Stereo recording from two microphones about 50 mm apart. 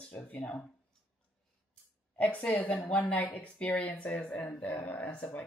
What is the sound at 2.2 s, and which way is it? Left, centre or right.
Speech, left.